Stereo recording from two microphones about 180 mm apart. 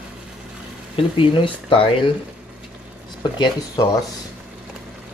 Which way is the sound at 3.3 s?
25° left (ahead or behind).